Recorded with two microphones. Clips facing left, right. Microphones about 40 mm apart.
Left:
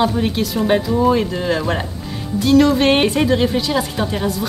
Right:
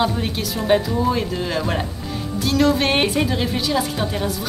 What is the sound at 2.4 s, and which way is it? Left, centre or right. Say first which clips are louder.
Music: left 5 dB; left.